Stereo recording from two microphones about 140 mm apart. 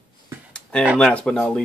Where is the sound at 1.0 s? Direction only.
5° left (ahead or behind).